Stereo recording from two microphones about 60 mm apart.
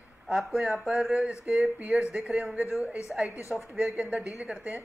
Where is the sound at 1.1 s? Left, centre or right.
Centre.